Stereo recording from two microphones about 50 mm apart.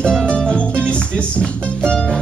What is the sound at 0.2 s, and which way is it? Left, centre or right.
Music, centre.